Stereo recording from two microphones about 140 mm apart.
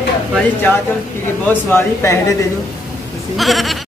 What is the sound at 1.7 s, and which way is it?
Speech, 20° left (ahead or behind).